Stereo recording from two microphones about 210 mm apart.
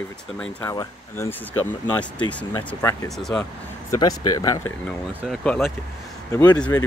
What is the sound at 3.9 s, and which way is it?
Speech, 15° left (ahead or behind).